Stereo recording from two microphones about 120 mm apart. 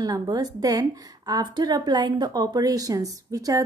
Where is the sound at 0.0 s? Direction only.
30° right (ahead or behind).